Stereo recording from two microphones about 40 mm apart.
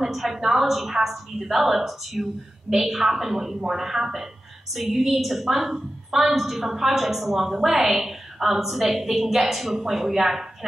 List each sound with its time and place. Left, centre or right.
0.0 s a woman's voice: centre